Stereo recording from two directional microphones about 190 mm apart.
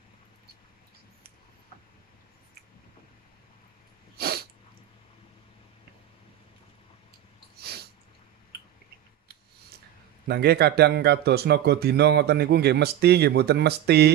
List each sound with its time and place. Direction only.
4.2 s sneeze: 55° right (ahead or behind)
10.2 s speech: 60° right (ahead or behind)